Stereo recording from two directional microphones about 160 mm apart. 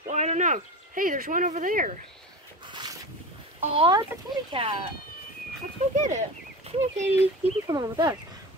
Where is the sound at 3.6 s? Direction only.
35° right (ahead or behind).